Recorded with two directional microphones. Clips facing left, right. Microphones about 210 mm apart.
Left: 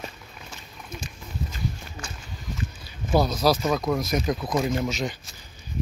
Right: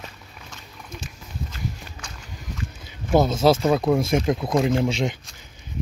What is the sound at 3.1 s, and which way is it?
Speech, 25° right (ahead or behind).